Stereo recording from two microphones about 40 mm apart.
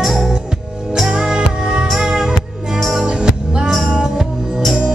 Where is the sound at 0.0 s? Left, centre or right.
Centre.